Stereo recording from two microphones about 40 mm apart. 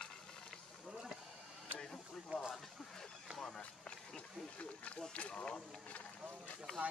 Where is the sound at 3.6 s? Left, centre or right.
Left.